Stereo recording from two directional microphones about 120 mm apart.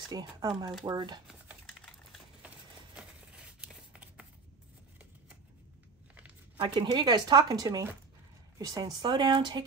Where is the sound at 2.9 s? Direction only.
10° right (ahead or behind).